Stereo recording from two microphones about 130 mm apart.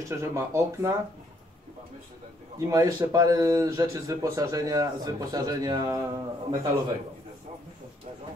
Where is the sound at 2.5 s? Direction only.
25° right (ahead or behind).